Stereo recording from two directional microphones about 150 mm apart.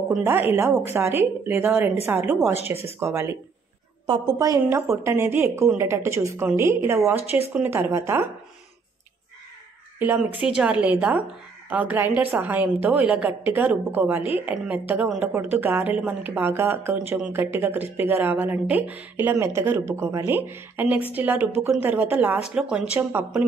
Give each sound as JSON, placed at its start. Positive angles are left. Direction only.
{"t": 0.2, "sound": "speech", "side_deg": -15}
{"t": 4.0, "sound": "a woman's voice", "side_deg": -30}
{"t": 9.9, "sound": "speech", "side_deg": -10}